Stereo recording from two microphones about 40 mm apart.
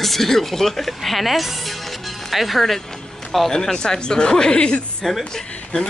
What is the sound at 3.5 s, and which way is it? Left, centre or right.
Speech, centre.